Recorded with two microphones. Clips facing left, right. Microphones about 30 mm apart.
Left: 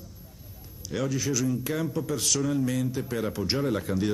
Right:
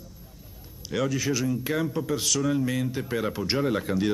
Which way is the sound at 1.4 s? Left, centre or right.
Centre.